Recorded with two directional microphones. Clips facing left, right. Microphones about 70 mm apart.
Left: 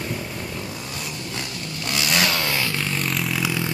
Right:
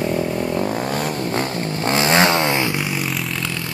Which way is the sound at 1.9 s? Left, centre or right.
Right.